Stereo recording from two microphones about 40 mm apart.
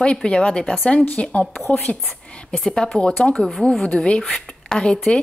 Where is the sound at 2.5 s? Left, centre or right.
Left.